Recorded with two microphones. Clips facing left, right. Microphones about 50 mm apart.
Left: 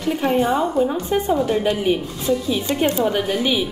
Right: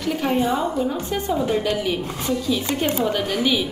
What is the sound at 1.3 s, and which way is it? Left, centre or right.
Speech, centre.